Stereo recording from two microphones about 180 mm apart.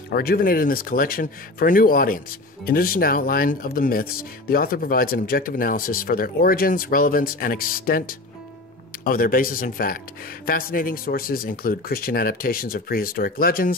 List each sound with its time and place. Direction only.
0.1 s speech: 55° left (ahead or behind)